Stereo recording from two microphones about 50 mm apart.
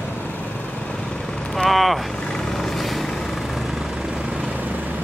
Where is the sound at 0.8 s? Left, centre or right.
Centre.